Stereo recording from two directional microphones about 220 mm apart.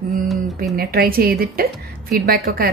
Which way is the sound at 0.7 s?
45° right (ahead or behind).